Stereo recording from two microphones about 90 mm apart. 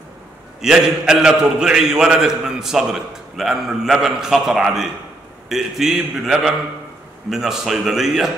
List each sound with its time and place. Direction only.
0.6 s a man's voice: 5° right (ahead or behind)